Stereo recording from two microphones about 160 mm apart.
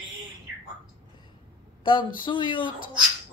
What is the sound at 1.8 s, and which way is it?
Speech, 30° left (ahead or behind).